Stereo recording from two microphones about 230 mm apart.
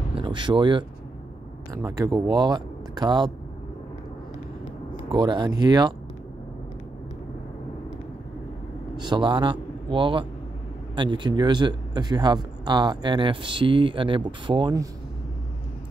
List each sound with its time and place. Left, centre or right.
0.1 s speech: right
5.1 s speech: centre
8.9 s a man's voice: centre